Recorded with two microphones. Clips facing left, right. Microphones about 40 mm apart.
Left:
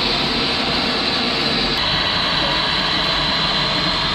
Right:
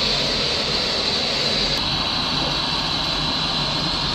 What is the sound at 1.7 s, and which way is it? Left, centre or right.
Vehicle, left.